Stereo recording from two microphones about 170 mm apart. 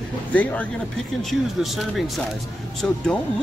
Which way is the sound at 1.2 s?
Centre (ahead or behind).